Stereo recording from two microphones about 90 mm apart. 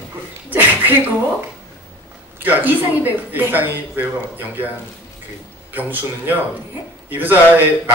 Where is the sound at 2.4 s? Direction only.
20° right (ahead or behind).